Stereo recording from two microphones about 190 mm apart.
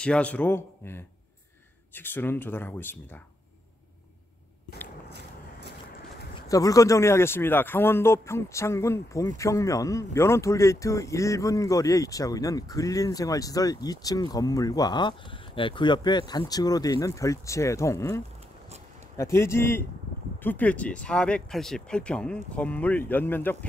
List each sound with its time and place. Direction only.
0.0 s speech: 5° left (ahead or behind)
6.5 s speech: 15° left (ahead or behind)